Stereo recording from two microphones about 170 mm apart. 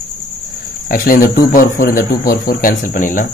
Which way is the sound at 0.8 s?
55° left (ahead or behind).